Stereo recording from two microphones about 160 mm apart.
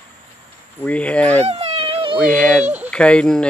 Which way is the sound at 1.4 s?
40° right (ahead or behind).